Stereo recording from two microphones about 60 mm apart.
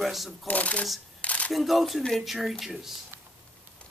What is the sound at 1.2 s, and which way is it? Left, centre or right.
Camera, left.